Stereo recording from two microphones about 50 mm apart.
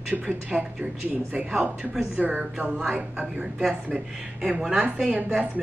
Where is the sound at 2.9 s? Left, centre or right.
Centre.